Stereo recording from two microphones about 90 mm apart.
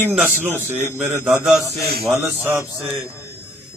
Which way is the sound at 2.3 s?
25° right (ahead or behind).